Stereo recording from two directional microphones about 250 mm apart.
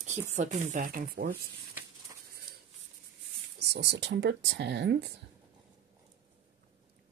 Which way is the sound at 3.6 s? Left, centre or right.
Right.